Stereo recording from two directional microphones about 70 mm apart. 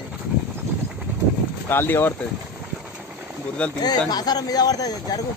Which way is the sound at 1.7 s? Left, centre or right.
Left.